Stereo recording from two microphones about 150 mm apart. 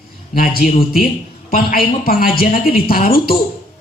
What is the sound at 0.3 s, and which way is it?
A man's voice, 80° left.